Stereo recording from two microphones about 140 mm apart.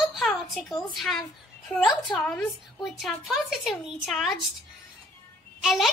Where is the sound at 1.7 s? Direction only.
5° left (ahead or behind).